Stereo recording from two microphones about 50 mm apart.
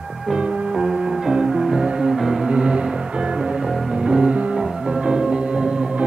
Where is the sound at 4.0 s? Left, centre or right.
Centre.